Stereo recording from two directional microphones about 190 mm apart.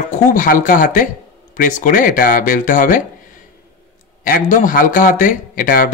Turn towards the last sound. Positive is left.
turn(degrees=45)  # may be behind; listen again after turning